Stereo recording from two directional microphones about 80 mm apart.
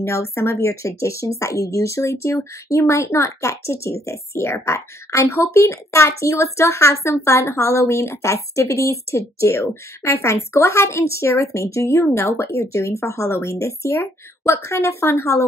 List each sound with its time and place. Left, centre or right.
0.0 s speech: left